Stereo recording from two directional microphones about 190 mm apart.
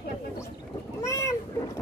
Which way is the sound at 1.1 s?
15° left (ahead or behind).